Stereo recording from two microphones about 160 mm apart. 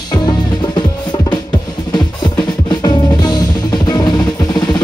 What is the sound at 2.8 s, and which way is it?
Music, 25° left (ahead or behind).